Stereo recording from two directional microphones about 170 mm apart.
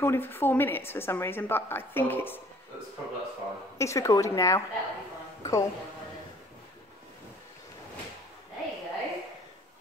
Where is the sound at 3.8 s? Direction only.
20° left (ahead or behind).